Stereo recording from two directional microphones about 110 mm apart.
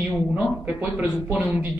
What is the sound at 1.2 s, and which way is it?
Speech, 15° right (ahead or behind).